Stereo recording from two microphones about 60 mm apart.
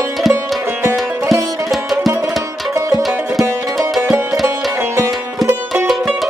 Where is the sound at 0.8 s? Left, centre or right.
Right.